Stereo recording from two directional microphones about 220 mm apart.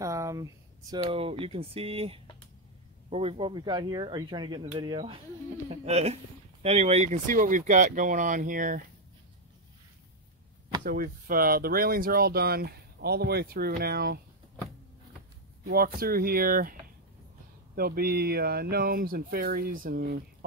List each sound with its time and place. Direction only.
0.0 s speech: 15° right (ahead or behind); by 8.8 s 40° right (ahead or behind)
10.8 s speech: 40° right (ahead or behind)
15.6 s speech: 40° right (ahead or behind)
17.7 s speech: 45° right (ahead or behind)